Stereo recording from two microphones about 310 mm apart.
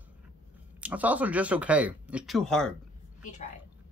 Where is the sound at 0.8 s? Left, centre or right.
Centre.